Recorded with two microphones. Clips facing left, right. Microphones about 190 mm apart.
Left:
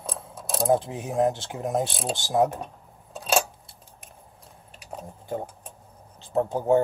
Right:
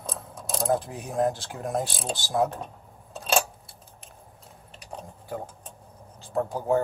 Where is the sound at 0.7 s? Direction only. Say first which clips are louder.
Left 3 dB; 25° left (ahead or behind).